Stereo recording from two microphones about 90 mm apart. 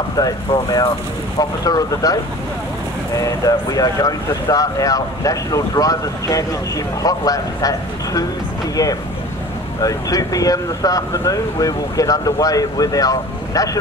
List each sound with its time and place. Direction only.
0.7 s speech: 45° left (ahead or behind)
3.2 s speech: 40° left (ahead or behind)
9.8 s speech: 40° left (ahead or behind)